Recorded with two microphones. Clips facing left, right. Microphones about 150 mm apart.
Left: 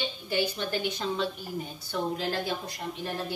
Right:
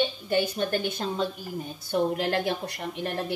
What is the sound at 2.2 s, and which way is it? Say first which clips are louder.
Speech: right 4 dB; 65° right (ahead or behind).